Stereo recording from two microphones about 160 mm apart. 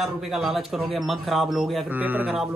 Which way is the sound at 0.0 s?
Centre (ahead or behind).